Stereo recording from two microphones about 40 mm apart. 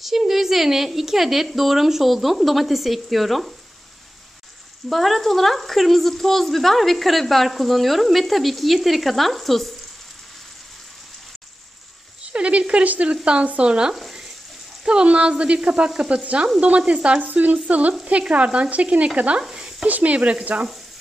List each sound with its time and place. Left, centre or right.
0.0 s a woman's voice: centre
4.8 s a woman's voice: centre
12.3 s stir: right
13.1 s speech: right
17.2 s stir: right
19.5 s a sound: centre
19.9 s stir: right